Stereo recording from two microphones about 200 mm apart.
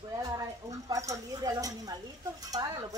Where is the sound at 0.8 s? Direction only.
15° right (ahead or behind).